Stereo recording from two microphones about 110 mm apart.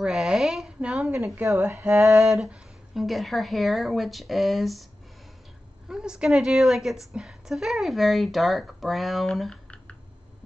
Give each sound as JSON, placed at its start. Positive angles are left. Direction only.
{"t": 0.0, "sound": "a sound", "side_deg": -5}
{"t": 1.1, "sound": "speech", "side_deg": -25}
{"t": 2.2, "sound": "a woman's voice", "side_deg": 0}
{"t": 5.9, "sound": "a woman's voice", "side_deg": -5}